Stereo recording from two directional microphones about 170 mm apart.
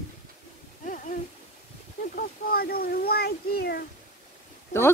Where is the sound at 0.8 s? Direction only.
50° left (ahead or behind).